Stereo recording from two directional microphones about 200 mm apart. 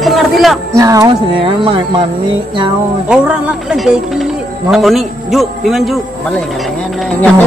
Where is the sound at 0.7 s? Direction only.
15° right (ahead or behind).